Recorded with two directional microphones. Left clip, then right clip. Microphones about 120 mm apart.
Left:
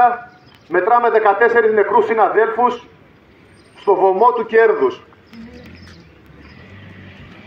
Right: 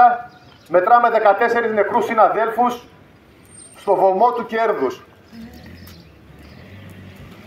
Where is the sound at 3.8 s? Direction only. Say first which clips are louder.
Left 2 dB; 35° right (ahead or behind).